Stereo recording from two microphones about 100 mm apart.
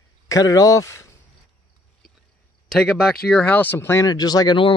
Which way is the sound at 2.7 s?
5° left (ahead or behind).